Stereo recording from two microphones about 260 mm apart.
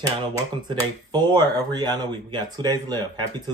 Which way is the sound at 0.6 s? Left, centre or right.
Centre.